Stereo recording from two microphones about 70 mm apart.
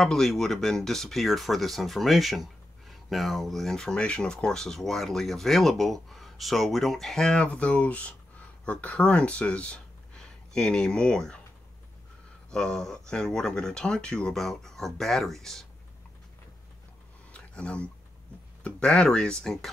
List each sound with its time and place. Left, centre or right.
0.0 s speech: centre
12.4 s speech: centre
17.3 s a sound: centre
18.6 s speech: centre